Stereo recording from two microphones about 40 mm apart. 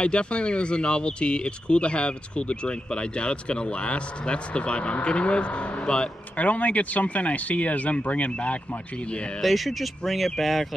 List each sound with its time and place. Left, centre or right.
0.0 s speech: left
6.3 s speech: left
9.4 s speech: centre